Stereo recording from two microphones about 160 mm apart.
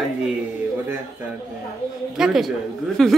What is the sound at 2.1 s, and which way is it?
Speech, 5° right (ahead or behind).